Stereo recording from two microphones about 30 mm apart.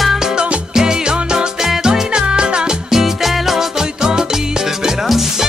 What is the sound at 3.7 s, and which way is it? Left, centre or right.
Music, right.